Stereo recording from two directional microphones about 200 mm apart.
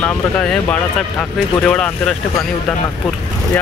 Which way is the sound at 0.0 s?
5° left (ahead or behind).